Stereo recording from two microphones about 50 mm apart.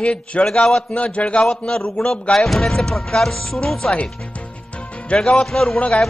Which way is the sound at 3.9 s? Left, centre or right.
Left.